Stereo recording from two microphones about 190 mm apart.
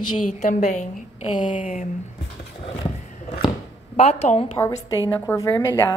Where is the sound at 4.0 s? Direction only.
35° left (ahead or behind).